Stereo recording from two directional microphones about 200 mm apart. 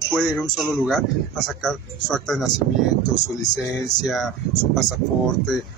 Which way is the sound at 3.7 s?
Centre (ahead or behind).